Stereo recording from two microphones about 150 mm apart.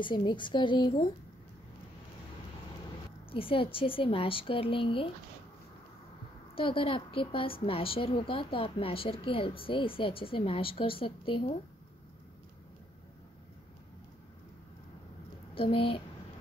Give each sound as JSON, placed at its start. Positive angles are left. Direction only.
{"t": 0.0, "sound": "a woman's voice", "side_deg": 30}
{"t": 3.3, "sound": "a woman's voice", "side_deg": 35}
{"t": 6.5, "sound": "a woman's voice", "side_deg": 35}
{"t": 15.5, "sound": "a woman's voice", "side_deg": 35}